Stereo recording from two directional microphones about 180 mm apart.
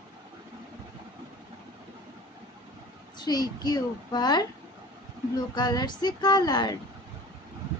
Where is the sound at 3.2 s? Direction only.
20° left (ahead or behind).